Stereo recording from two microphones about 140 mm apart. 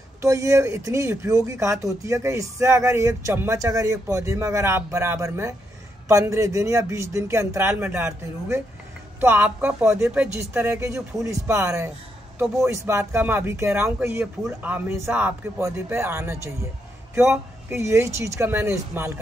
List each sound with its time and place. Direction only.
0.2 s speech: 20° right (ahead or behind); by 10.3 s 5° right (ahead or behind)
10.5 s speech: 15° right (ahead or behind)
10.9 s speech: 5° right (ahead or behind)
11.2 s speech: 20° right (ahead or behind)